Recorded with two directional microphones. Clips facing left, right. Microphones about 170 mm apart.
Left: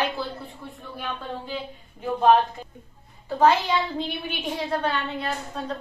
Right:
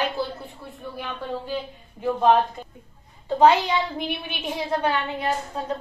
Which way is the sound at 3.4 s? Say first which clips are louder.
Right 2 dB; 15° right (ahead or behind).